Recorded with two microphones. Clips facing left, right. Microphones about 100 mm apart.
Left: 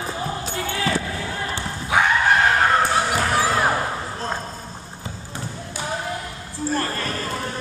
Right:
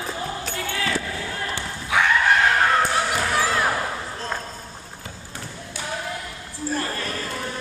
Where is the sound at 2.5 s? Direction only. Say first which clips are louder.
Left 2 dB; 20° left (ahead or behind).